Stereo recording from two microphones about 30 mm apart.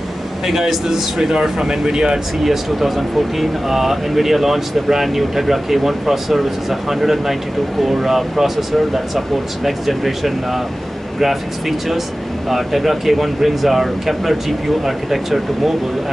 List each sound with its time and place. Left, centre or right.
0.5 s speech: centre
2.4 s speech: centre
12.4 s speech: centre